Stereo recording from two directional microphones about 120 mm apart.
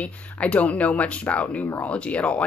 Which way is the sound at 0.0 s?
10° left (ahead or behind).